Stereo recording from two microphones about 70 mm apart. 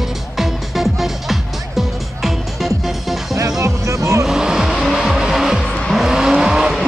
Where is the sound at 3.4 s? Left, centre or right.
Right.